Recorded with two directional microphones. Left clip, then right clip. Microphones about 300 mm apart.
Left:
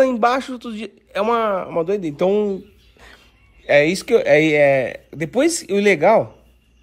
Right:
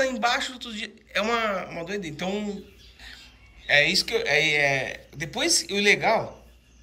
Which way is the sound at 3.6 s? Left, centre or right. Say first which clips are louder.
Left 5 dB; centre.